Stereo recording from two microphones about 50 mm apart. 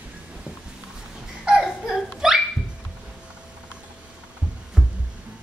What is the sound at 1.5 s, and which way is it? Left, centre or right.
Laughter, centre.